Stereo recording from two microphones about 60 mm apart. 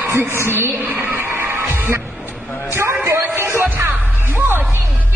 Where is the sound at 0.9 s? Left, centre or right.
Right.